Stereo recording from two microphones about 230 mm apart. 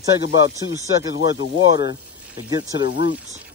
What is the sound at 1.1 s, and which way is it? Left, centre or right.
Speech, left.